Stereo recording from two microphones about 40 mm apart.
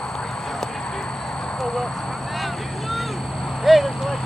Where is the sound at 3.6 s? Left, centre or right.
Centre.